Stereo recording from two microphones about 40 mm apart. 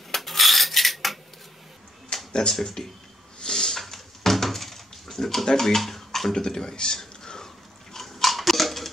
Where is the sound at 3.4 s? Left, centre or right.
Centre.